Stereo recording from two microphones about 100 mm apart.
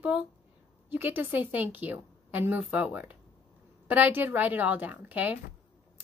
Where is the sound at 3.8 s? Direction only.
15° right (ahead or behind).